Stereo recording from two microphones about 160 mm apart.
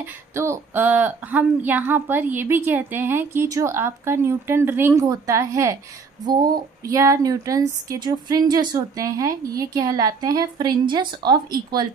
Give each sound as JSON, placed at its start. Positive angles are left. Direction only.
{"t": 0.0, "sound": "speech", "side_deg": -15}